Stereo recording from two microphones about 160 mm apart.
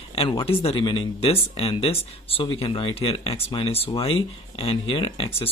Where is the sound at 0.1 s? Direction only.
35° left (ahead or behind).